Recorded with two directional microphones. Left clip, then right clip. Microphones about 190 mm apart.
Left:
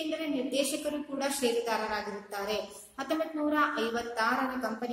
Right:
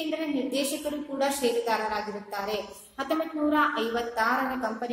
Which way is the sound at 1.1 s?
5° left (ahead or behind).